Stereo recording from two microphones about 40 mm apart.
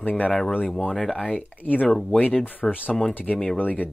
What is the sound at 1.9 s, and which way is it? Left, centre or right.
Speech, centre.